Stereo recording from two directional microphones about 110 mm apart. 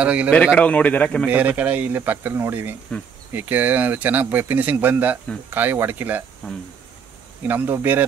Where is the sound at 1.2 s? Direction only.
15° right (ahead or behind).